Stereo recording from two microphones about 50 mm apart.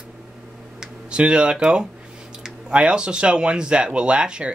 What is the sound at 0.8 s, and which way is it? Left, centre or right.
Speech, centre.